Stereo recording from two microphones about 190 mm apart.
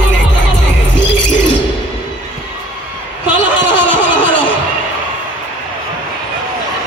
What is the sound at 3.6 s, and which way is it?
Laughter, 75° left (ahead or behind).